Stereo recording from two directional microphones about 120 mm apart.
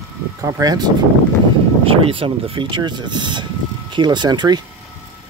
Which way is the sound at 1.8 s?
50° right (ahead or behind).